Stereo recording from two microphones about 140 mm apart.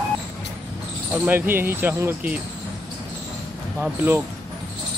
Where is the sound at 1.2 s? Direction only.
15° right (ahead or behind).